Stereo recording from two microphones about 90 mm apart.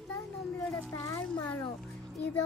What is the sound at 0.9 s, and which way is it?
Speech, 40° left (ahead or behind).